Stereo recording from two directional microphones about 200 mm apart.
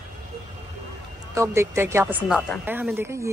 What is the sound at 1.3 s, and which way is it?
A woman's voice, 15° right (ahead or behind).